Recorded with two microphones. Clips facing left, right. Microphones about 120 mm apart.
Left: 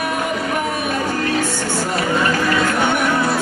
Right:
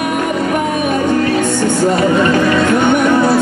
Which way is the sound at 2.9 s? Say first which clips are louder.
Right 7 dB; 20° right (ahead or behind).